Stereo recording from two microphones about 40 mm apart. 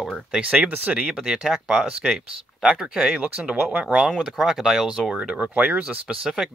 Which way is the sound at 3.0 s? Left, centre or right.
Right.